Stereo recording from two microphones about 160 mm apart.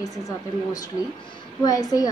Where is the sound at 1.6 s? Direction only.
20° left (ahead or behind).